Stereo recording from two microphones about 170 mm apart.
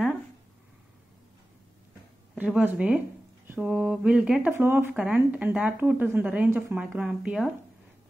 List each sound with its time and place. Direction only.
2.3 s speech: 10° right (ahead or behind)